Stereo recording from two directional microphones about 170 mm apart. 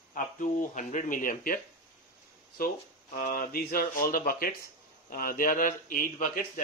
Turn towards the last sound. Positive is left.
turn(degrees=55)  # may be behind; listen again after turning